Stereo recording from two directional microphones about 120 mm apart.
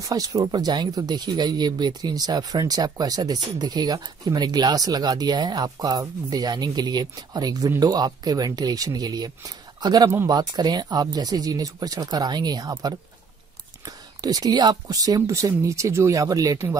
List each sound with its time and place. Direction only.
0.0 s speech: 30° right (ahead or behind)